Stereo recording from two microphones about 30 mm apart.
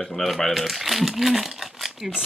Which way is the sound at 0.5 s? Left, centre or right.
Centre.